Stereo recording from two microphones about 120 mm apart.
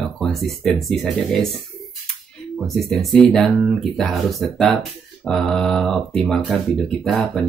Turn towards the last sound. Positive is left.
turn(degrees=5)  # may be behind; listen again after turning